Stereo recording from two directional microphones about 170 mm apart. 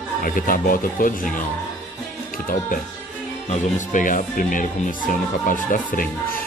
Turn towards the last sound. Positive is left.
turn(degrees=60)  # may be behind; listen again after turning